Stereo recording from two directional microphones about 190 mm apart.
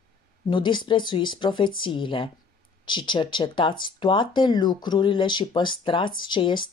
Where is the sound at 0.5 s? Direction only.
25° left (ahead or behind).